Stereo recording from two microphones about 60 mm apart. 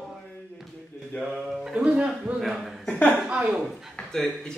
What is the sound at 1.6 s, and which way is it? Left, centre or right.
Speech, centre.